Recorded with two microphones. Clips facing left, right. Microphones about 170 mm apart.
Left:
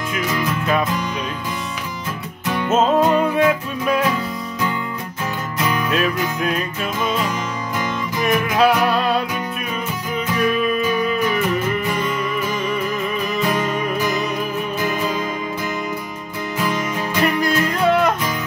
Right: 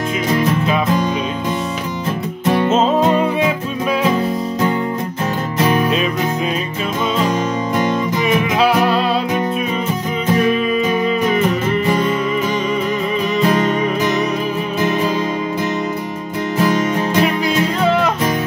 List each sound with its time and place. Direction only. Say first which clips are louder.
2.4 s music: right 7 dB; 25° right (ahead or behind)
5.6 s music: right 6 dB; 25° right (ahead or behind)
16.5 s music: right 6 dB; 40° right (ahead or behind)